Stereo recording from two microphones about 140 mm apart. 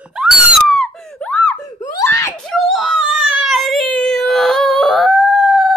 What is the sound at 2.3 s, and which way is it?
Baby cry, 5° left (ahead or behind).